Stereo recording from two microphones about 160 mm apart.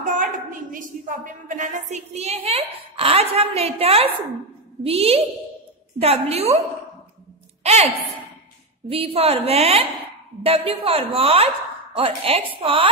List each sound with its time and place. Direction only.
0.0 s a woman's voice: 55° right (ahead or behind)
7.6 s a woman's voice: 40° right (ahead or behind)